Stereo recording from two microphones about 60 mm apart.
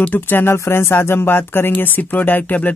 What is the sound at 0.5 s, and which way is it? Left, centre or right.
Speech, left.